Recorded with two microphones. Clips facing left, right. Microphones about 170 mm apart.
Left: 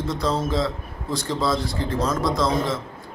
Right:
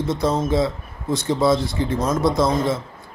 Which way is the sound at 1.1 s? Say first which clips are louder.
Right 5 dB; 25° right (ahead or behind).